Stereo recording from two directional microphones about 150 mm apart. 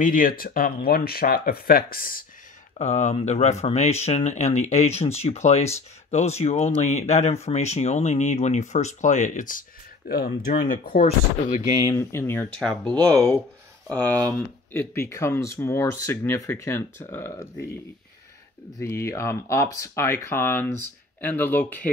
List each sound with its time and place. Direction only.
0.0 s speech: 70° left (ahead or behind)
2.8 s speech: 50° left (ahead or behind); by 11.0 s 75° left (ahead or behind)
11.0 s speech: 45° left (ahead or behind)
11.8 s speech: 20° left (ahead or behind)
12.5 s speech: 5° left (ahead or behind)
12.9 s speech: 20° right (ahead or behind)
14.7 s speech: 15° left (ahead or behind)
18.8 s speech: 20° left (ahead or behind)